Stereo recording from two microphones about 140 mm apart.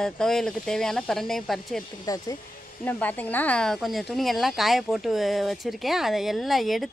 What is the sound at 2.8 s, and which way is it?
A woman's voice, 10° left (ahead or behind).